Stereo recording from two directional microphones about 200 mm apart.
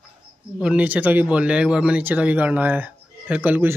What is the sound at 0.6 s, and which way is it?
Speech, 5° right (ahead or behind).